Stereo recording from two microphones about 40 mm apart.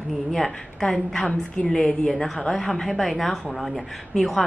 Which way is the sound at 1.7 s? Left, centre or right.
Centre.